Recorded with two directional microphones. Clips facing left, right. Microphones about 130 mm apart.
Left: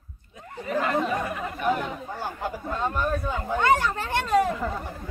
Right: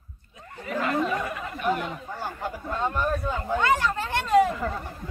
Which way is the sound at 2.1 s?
5° left (ahead or behind).